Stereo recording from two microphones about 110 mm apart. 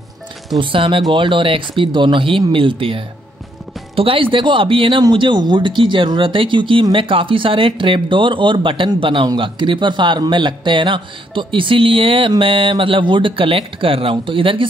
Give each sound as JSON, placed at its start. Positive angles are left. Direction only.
{"t": 0.6, "sound": "speech", "side_deg": -55}